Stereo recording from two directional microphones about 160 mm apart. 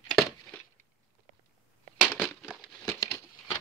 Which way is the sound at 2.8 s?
20° left (ahead or behind).